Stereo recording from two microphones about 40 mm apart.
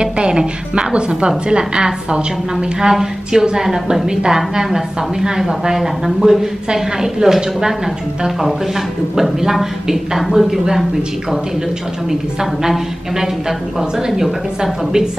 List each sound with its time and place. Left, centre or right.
0.0 s a woman's voice: right; by 10.6 s centre
12.1 s a woman's voice: centre